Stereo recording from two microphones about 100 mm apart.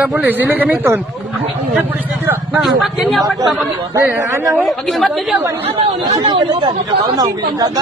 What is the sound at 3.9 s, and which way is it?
Speech, 25° right (ahead or behind).